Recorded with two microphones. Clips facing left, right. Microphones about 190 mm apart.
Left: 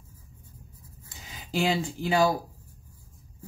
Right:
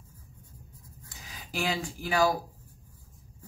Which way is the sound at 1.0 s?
25° left (ahead or behind).